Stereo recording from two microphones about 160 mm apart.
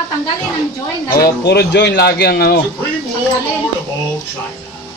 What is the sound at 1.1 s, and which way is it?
Speech, 85° left.